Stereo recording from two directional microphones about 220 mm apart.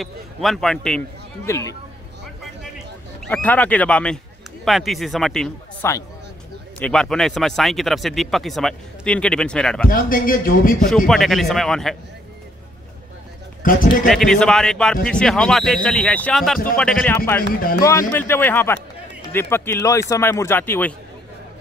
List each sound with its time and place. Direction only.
0.0 s a man's voice: centre (ahead or behind)
3.3 s a man's voice: 5° left (ahead or behind)
9.8 s speech: 40° left (ahead or behind)
11.1 s speech: centre (ahead or behind)
13.6 s speech: 40° left (ahead or behind)
14.0 s a man's voice: centre (ahead or behind)